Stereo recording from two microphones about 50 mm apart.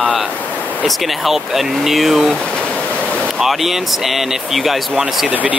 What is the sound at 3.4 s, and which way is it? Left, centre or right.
Speech, centre.